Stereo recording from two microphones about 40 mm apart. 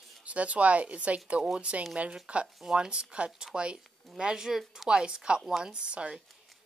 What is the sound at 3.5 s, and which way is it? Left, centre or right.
Speech, right.